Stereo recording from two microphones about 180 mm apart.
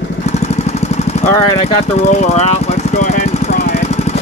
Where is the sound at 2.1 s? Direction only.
40° left (ahead or behind).